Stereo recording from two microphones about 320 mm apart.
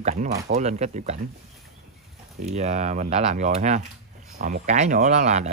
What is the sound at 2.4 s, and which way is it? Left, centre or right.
Speech, right.